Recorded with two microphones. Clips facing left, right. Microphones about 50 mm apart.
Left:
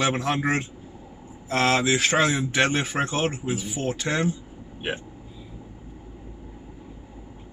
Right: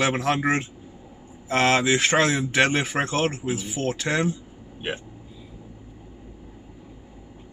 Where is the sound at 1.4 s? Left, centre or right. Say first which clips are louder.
Right 1 dB; right.